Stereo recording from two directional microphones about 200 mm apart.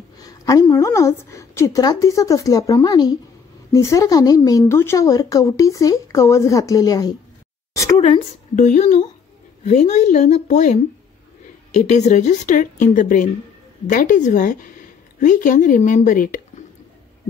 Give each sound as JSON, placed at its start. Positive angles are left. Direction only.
{"t": 0.2, "sound": "speech", "side_deg": 15}
{"t": 7.7, "sound": "a sound", "side_deg": 15}
{"t": 8.5, "sound": "a woman's voice", "side_deg": 35}